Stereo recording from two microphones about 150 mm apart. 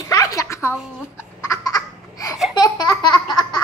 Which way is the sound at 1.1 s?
20° left (ahead or behind).